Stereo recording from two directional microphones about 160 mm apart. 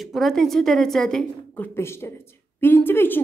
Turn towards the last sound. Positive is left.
turn(degrees=15)  # may be behind; listen again after turning